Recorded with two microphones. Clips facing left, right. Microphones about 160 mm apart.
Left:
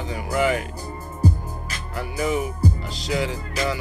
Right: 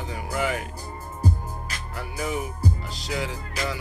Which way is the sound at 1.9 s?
80° left.